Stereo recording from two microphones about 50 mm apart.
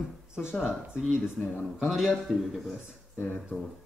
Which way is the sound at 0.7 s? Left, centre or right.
Right.